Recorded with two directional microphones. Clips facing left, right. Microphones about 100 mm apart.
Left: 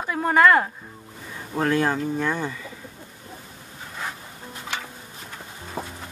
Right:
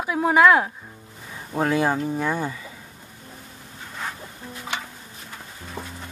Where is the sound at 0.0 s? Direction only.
5° right (ahead or behind).